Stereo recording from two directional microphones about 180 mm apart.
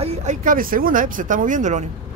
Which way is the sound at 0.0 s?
40° right (ahead or behind).